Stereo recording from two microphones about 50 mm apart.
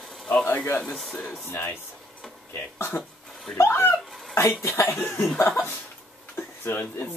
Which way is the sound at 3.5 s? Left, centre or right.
Left.